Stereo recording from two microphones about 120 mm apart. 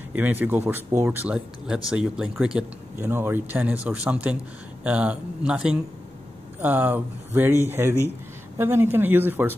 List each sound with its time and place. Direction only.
0.1 s speech: 15° right (ahead or behind)
3.0 s speech: 20° right (ahead or behind)